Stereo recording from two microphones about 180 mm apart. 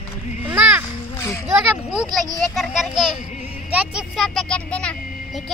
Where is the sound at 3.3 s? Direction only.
35° left (ahead or behind).